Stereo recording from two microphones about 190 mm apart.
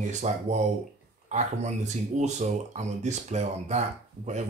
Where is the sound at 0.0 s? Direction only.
35° right (ahead or behind).